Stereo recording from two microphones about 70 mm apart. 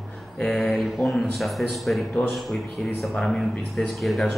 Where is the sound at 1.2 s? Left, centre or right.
Centre.